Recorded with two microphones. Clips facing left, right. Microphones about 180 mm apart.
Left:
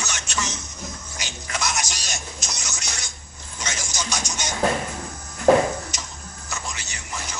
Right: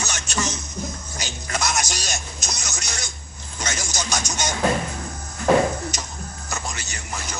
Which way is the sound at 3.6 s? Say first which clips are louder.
Right 2 dB; 45° right (ahead or behind).